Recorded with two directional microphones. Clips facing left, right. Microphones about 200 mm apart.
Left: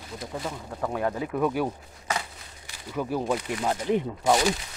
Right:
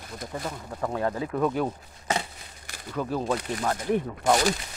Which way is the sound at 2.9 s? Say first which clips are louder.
Even; 10° left (ahead or behind).